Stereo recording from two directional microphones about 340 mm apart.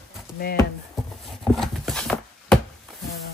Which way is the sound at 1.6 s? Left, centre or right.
Centre.